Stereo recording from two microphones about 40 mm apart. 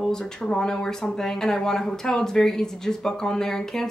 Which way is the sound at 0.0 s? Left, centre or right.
Centre.